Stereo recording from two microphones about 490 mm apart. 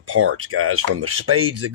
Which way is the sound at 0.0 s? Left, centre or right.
Right.